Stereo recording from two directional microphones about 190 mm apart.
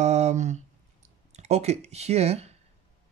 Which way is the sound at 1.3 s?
35° right (ahead or behind).